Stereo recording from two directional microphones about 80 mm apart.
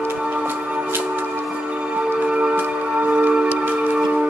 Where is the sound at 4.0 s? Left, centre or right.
Centre.